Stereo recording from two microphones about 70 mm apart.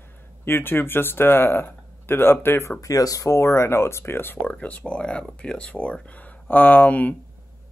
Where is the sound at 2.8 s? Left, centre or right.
Left.